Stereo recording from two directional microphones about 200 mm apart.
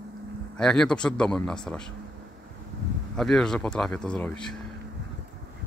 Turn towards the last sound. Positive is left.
turn(degrees=5)  # may be behind; listen again after turning